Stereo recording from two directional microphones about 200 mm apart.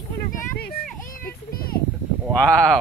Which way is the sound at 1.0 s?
45° left (ahead or behind).